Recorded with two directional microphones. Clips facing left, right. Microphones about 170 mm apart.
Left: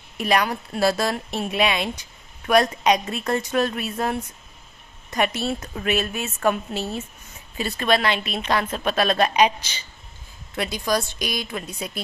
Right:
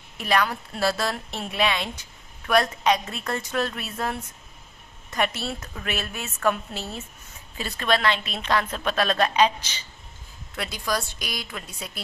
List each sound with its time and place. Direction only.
0.2 s a woman's voice: 15° left (ahead or behind)
10.5 s a woman's voice: 20° left (ahead or behind)